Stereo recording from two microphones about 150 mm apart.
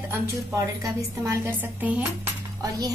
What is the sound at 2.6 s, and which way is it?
Speech, 25° right (ahead or behind).